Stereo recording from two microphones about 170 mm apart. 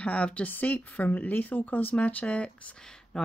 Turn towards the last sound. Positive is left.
turn(degrees=5)  # may be behind; listen again after turning